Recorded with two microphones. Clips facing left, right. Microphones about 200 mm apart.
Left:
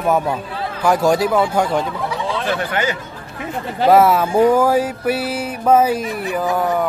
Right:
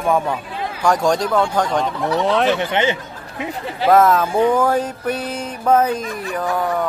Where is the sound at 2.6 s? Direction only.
25° right (ahead or behind).